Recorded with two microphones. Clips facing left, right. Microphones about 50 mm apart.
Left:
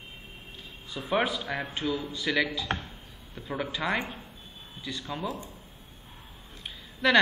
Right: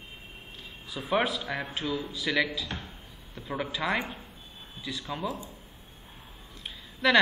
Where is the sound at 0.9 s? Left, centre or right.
Centre.